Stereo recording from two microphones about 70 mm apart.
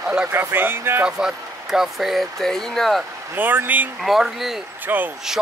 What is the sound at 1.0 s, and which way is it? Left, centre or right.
Speech, centre.